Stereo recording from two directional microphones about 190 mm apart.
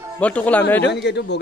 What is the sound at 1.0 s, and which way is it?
Speech, 65° left (ahead or behind).